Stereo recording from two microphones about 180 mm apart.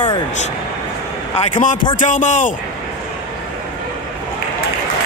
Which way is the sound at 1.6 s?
45° left (ahead or behind).